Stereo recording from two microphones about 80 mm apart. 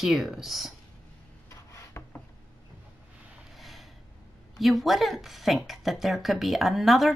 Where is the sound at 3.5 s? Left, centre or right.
Centre.